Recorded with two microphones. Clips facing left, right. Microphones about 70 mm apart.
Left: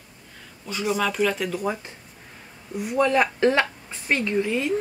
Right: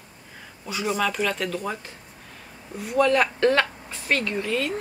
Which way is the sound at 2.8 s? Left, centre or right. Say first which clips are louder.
Even; centre.